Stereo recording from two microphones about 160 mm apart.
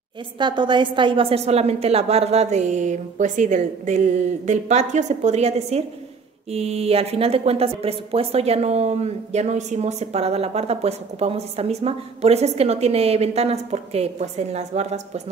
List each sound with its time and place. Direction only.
0.4 s a woman's voice: 30° right (ahead or behind)